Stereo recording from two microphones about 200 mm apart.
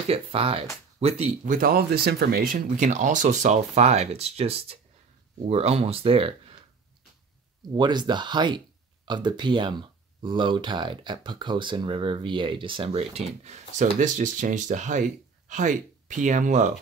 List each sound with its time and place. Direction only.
0.1 s speech: 30° right (ahead or behind)
7.7 s speech: 20° right (ahead or behind); by 16.7 s 35° right (ahead or behind)